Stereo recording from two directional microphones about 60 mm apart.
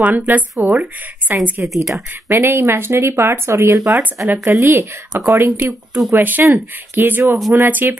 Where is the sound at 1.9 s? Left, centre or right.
Right.